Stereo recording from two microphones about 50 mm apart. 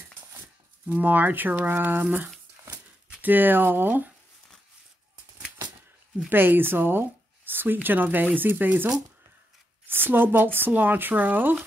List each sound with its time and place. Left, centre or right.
0.8 s speech: right
6.3 s speech: right